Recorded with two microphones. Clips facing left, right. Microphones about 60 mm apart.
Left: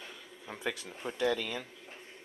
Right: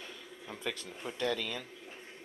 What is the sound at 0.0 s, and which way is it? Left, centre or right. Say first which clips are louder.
Speech: right 1 dB; centre.